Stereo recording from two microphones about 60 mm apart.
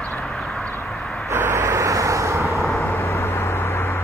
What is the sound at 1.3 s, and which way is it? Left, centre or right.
Vehicle, right.